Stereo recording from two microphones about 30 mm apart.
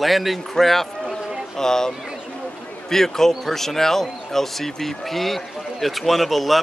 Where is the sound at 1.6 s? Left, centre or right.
Centre.